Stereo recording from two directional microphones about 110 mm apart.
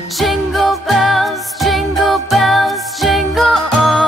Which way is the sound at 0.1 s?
Centre (ahead or behind).